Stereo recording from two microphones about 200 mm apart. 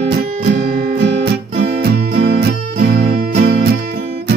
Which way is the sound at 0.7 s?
50° right (ahead or behind).